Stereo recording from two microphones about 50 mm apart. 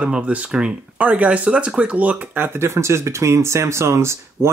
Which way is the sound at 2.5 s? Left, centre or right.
Right.